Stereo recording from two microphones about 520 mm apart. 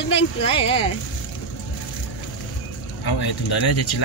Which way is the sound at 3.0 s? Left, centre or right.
Left.